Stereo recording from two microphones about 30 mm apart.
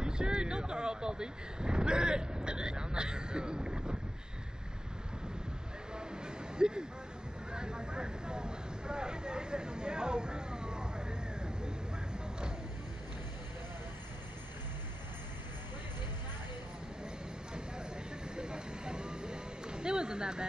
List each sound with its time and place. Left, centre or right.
0.0 s speech: right
5.9 s vehicle: right
18.3 s vehicle: right